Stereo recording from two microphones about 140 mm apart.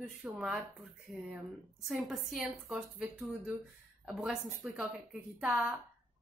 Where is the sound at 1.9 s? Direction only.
5° right (ahead or behind).